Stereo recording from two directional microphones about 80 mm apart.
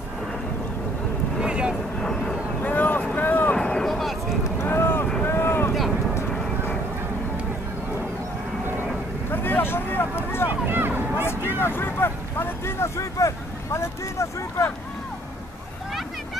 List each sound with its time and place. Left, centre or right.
1.4 s vehicle: centre
2.0 s vehicle: centre
2.6 s boat: left
3.2 s a sound: left
3.5 s a sound: centre
4.6 s vehicle: left
5.2 s boat: left
9.3 s vehicle: left
10.7 s vehicle: right
11.6 s vehicle: left